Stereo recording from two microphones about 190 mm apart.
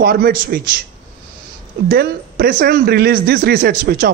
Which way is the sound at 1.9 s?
55° right (ahead or behind).